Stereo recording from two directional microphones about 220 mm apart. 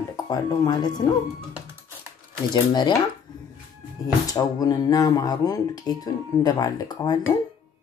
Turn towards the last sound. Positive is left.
turn(degrees=15)  # may be behind; listen again after turning